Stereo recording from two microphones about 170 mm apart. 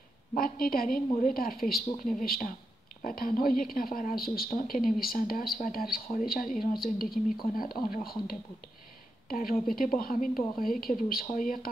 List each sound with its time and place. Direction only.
0.3 s speech: 55° left (ahead or behind)